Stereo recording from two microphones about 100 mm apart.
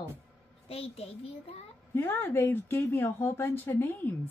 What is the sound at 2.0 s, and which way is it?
A woman's voice, 20° left (ahead or behind).